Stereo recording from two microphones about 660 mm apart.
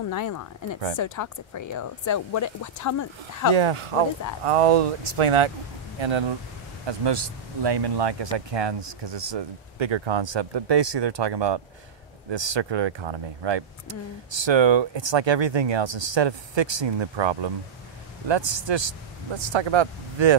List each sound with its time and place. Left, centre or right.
0.1 s speech: left
3.5 s speech: right